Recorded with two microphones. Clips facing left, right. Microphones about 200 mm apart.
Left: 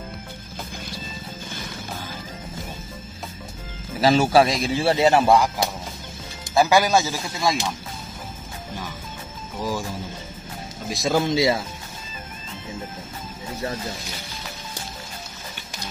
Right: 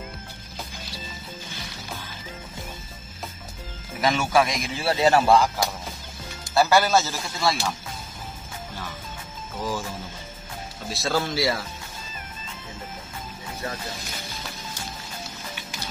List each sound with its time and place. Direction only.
1.5 s music: 50° left (ahead or behind)
4.0 s speech: 35° left (ahead or behind); by 7.7 s 15° left (ahead or behind)
9.6 s speech: 10° left (ahead or behind)
10.9 s speech: 15° left (ahead or behind)